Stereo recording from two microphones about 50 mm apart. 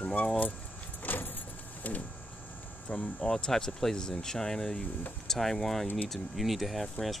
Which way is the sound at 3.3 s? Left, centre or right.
Centre.